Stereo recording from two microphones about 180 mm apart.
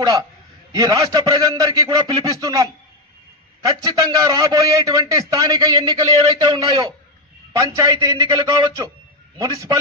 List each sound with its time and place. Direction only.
0.7 s a man's voice: 20° right (ahead or behind)